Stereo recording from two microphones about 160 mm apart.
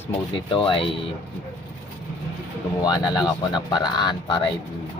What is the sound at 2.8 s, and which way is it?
Speech, 25° left (ahead or behind).